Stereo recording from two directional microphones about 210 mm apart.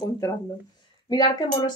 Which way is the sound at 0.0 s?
15° left (ahead or behind).